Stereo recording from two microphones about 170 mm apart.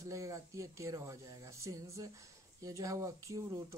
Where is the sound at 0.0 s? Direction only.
20° right (ahead or behind).